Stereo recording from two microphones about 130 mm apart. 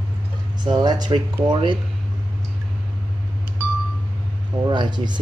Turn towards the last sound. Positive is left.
turn(degrees=-35)  # may be behind; listen again after turning